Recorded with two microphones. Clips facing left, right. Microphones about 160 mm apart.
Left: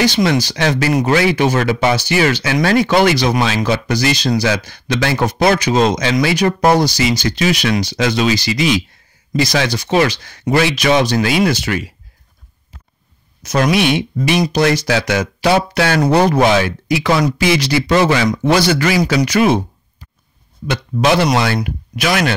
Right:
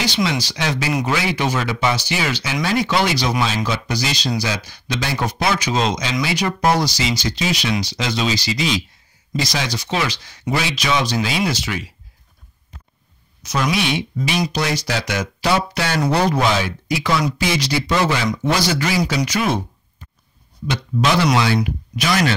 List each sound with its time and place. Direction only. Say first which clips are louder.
0.0 s speech: left 7 dB; 50° left (ahead or behind)
13.5 s speech: left 6 dB; 60° left (ahead or behind)
21.0 s speech: left 3 dB; 60° left (ahead or behind)